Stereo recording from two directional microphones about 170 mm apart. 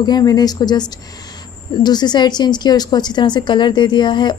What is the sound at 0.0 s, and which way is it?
A woman's voice, 25° left (ahead or behind).